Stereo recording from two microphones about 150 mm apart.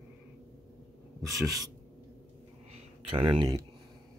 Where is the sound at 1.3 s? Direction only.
Centre (ahead or behind).